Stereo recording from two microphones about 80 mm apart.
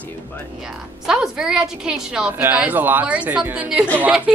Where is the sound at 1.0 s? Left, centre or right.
Centre.